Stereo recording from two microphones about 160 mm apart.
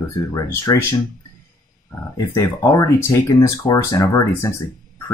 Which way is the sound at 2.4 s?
20° left (ahead or behind).